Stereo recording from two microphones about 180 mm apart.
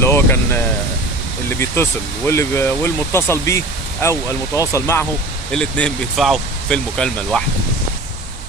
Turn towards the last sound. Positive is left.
turn(degrees=5)  # may be behind; listen again after turning